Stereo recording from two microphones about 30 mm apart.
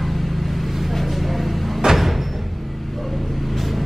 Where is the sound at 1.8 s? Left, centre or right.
Centre.